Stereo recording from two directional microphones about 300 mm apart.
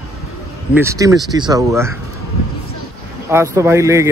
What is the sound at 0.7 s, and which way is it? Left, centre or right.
Speech, centre.